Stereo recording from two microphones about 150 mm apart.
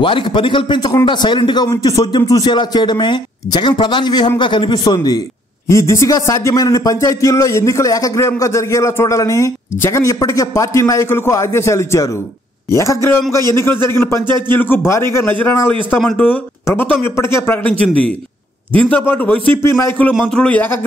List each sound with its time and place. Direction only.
0.0 s speech: 35° left (ahead or behind); by 20.6 s 5° left (ahead or behind)